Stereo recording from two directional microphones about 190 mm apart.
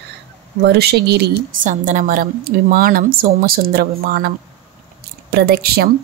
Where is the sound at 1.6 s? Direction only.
45° right (ahead or behind).